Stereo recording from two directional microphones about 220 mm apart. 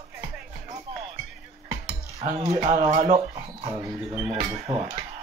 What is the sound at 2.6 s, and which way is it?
Speech, 35° right (ahead or behind).